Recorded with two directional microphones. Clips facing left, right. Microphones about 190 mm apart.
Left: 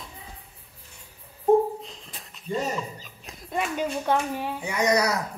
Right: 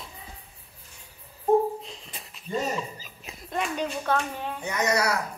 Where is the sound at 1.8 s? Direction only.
Centre (ahead or behind).